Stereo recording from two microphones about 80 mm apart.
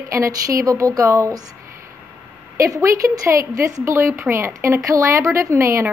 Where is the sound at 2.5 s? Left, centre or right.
Right.